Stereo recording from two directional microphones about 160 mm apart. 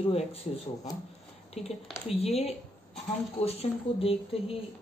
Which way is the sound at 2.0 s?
40° left (ahead or behind).